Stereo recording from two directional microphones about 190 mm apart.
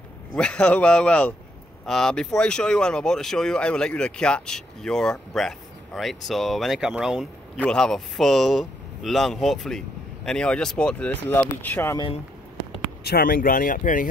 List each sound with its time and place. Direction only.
0.4 s speech: 5° left (ahead or behind)
13.0 s speech: 55° left (ahead or behind)